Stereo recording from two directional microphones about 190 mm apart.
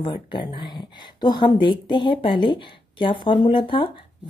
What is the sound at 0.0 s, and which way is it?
Speech, 25° left (ahead or behind).